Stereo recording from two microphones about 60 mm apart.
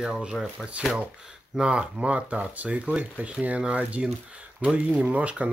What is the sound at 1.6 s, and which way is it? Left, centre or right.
Speech, centre.